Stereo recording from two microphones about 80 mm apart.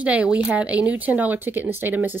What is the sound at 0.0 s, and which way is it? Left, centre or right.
Speech, centre.